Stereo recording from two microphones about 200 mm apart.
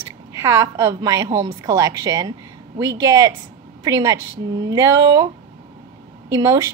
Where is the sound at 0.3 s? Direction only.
15° right (ahead or behind).